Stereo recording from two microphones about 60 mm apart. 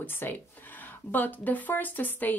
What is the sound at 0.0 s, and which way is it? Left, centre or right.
Speech, left.